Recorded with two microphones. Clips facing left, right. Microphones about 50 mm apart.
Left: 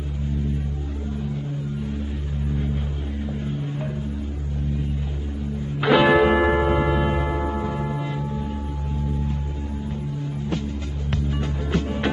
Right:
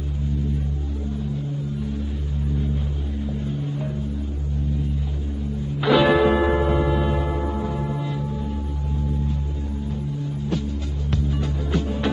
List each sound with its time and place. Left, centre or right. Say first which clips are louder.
5.8 s church bell: left 1 dB; left
7.9 s gong: even; left
11.1 s music: right 1 dB; left